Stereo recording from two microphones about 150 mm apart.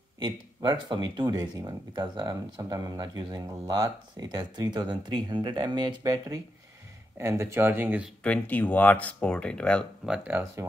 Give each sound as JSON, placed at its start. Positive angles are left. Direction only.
{"t": 0.2, "sound": "speech", "side_deg": -30}
{"t": 8.2, "sound": "speech", "side_deg": 10}
{"t": 10.0, "sound": "speech", "side_deg": -10}